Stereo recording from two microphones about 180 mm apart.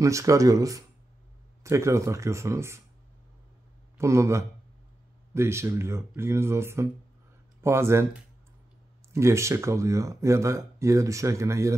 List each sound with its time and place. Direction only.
0.0 s speech: 20° right (ahead or behind)
4.0 s speech: 15° right (ahead or behind)